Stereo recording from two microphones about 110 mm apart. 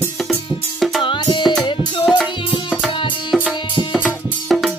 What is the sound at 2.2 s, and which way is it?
Music, 5° right (ahead or behind).